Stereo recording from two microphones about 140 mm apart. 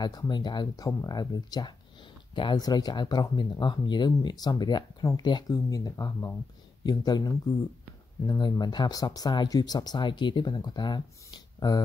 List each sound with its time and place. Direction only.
0.0 s speech: 30° left (ahead or behind)